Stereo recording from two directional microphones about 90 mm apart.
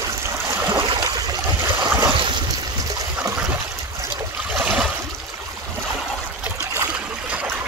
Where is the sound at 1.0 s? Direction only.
50° right (ahead or behind).